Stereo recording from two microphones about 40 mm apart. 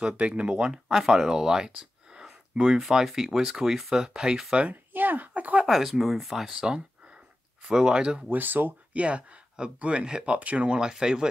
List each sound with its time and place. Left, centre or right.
0.0 s speech: right
1.3 s a sound: centre
2.8 s speech: centre
4.6 s speech: right
5.7 s speech: centre; by 8.2 s right
8.3 s speech: right
8.9 s speech: right
10.0 s speech: centre
10.3 s speech: right
10.7 s speech: centre